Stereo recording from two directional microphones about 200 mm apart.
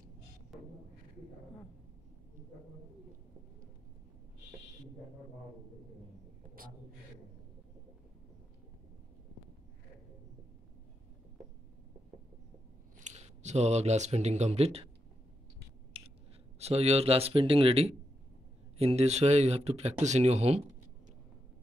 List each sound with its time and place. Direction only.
0.5 s didgeridoo: centre (ahead or behind)
13.0 s speech: 35° right (ahead or behind)
15.9 s scissors: 30° right (ahead or behind)
16.5 s speech: 30° right (ahead or behind)